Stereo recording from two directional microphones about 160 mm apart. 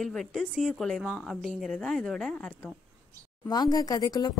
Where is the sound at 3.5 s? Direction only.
25° left (ahead or behind).